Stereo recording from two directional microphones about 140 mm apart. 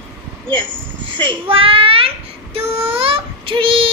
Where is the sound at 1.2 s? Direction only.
35° right (ahead or behind).